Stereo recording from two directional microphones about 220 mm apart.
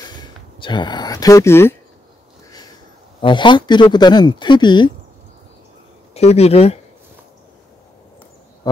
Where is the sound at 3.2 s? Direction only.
20° left (ahead or behind).